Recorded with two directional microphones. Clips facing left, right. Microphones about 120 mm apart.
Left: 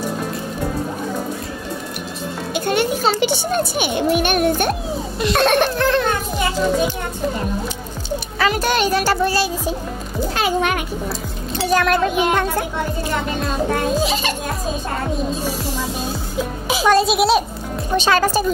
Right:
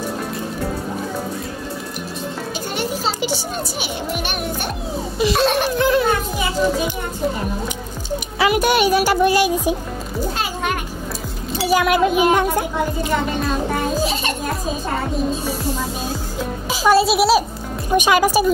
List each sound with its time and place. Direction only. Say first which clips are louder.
2.5 s a child's voice: left 8 dB; 60° left (ahead or behind)
5.8 s speech: right 1 dB; 10° right (ahead or behind)
8.4 s speech: right 2 dB; 15° right (ahead or behind)
10.3 s a sound: left 8 dB; 70° left (ahead or behind)
11.5 s speech: right 1 dB; 10° right (ahead or behind)
14.0 s a child's voice: left 1 dB; 90° left
16.8 s a child's voice: right 1 dB; 5° right (ahead or behind)
17.9 s speech: right 2 dB; 15° right (ahead or behind)